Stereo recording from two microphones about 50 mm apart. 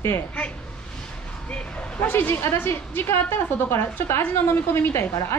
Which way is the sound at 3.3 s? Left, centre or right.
Left.